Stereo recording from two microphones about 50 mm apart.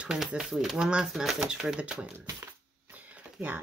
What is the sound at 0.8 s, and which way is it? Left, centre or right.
Speech, centre.